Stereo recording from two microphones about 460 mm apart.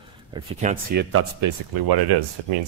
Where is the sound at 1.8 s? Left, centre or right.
Right.